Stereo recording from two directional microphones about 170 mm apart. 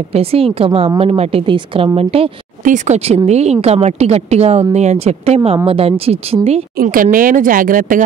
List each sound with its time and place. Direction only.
0.1 s a woman's voice: 35° right (ahead or behind)
2.6 s a woman's voice: 45° right (ahead or behind)
6.8 s speech: 55° right (ahead or behind)